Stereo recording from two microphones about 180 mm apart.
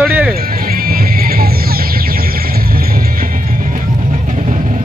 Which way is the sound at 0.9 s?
55° right (ahead or behind).